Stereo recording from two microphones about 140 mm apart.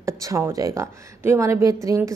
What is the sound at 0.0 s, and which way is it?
A woman's voice, 20° right (ahead or behind).